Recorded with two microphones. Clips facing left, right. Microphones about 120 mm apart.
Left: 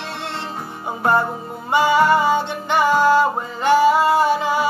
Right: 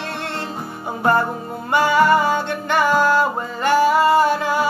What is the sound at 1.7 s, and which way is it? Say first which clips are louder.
Music: even; 15° left (ahead or behind).